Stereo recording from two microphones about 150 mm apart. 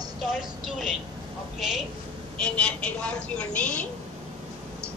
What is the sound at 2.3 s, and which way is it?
A woman's voice, 5° left (ahead or behind).